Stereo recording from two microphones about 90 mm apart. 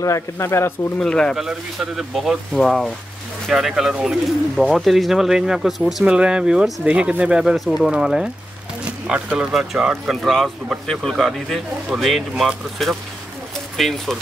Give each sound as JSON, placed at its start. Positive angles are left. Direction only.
{"t": 0.0, "sound": "speech", "side_deg": 35}
{"t": 0.9, "sound": "speech", "side_deg": 10}
{"t": 1.3, "sound": "speech", "side_deg": -5}